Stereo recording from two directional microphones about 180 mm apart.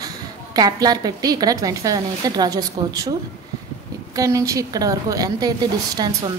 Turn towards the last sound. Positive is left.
turn(degrees=-20)  # may be behind; listen again after turning